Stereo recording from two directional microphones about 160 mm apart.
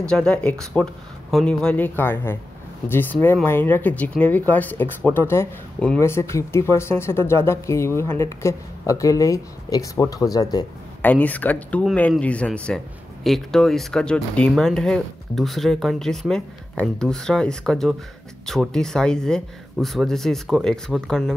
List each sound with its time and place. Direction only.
0.1 s speech: 5° left (ahead or behind); by 10.7 s 25° left (ahead or behind)
11.0 s a man's voice: 10° left (ahead or behind)